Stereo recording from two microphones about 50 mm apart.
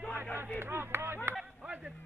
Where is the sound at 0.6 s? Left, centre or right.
Right.